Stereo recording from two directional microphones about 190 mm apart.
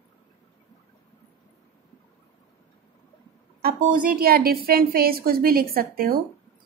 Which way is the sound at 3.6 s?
50° right (ahead or behind).